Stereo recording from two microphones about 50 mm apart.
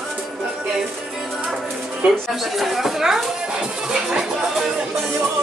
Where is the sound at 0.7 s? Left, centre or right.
Centre.